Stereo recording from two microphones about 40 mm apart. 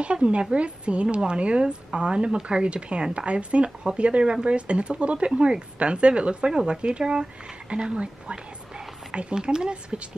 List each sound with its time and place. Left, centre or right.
0.0 s speech: right